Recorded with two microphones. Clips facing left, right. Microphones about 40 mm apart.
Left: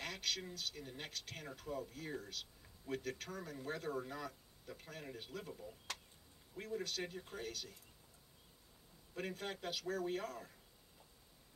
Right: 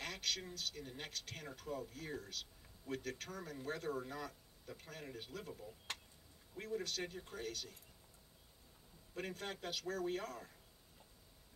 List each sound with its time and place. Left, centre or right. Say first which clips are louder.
0.0 s a man's voice: even; centre
5.9 s a sound: right 1 dB; right
6.5 s a man's voice: even; centre
9.1 s a man's voice: left 1 dB; centre